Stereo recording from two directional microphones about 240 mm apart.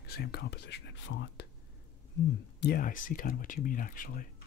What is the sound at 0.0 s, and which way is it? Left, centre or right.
Speech, left.